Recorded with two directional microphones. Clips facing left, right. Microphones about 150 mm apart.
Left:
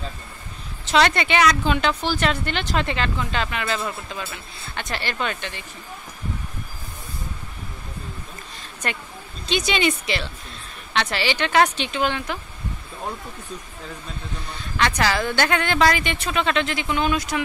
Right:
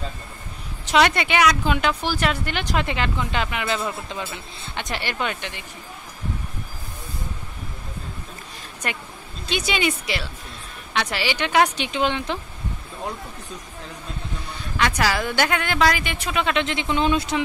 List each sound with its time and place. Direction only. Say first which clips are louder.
0.8 s speech: even; 10° right (ahead or behind)
9.5 s speech: left 2 dB; 10° right (ahead or behind)
14.8 s speech: left 1 dB; 10° right (ahead or behind)
16.6 s speech: right 1 dB; 25° right (ahead or behind)